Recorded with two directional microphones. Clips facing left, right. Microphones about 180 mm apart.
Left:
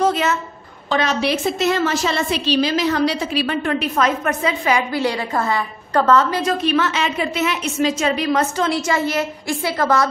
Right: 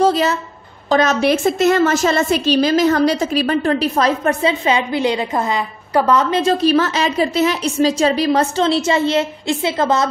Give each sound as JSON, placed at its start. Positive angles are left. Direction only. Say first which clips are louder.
{"t": 0.0, "sound": "a woman's voice", "louder": "right 3 dB", "side_deg": -35}
{"t": 6.4, "sound": "a woman's voice", "louder": "right 4 dB", "side_deg": -35}